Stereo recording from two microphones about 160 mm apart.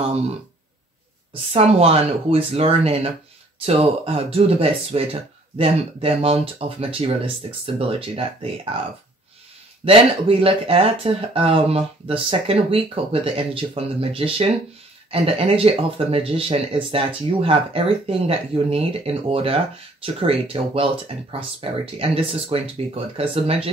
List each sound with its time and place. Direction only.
1.5 s speech: 40° right (ahead or behind)
9.8 s speech: 35° right (ahead or behind)